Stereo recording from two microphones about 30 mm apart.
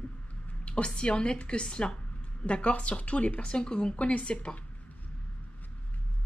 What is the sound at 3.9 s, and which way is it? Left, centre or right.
Speech, left.